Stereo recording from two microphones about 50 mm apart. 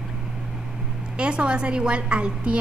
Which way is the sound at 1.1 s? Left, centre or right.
Right.